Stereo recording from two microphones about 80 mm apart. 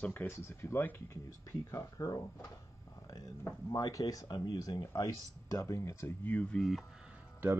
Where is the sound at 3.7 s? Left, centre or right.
Left.